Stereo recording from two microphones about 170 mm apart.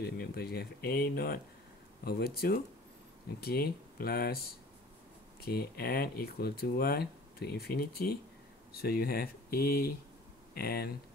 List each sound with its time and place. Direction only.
0.0 s speech: 70° left (ahead or behind)
5.4 s speech: 65° left (ahead or behind)